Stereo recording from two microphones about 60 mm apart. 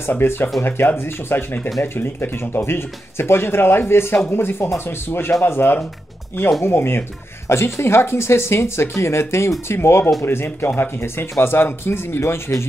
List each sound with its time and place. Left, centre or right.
0.0 s speech: left